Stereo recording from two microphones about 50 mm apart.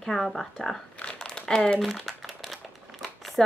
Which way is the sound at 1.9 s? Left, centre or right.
Centre.